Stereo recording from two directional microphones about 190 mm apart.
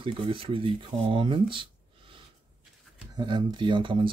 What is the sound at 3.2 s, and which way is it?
Speech, 25° right (ahead or behind).